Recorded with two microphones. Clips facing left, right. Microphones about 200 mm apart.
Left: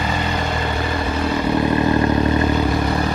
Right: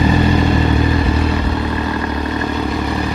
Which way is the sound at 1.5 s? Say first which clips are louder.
Left 3 dB; 20° left (ahead or behind).